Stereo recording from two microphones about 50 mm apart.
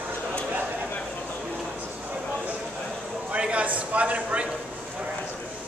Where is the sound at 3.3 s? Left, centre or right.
Right.